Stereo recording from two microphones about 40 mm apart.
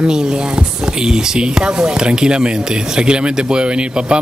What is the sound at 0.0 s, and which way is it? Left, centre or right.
Speech, centre.